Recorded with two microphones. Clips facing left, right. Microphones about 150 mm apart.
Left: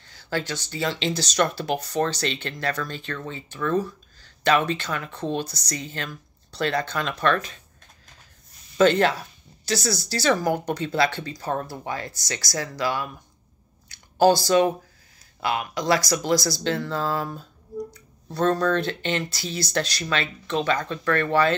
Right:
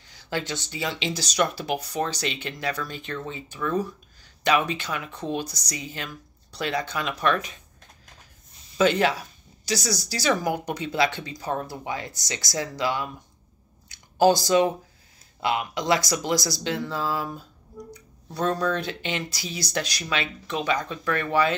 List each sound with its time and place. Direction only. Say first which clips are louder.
0.0 s speech: left 2 dB; 15° right (ahead or behind)
8.7 s speech: left 3 dB; 10° right (ahead or behind)
13.8 s a sound: left 1 dB; 15° right (ahead or behind)
15.4 s speech: left 1 dB; 20° right (ahead or behind)